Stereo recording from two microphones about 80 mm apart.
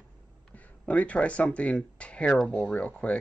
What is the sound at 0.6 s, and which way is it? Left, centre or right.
Speech, centre.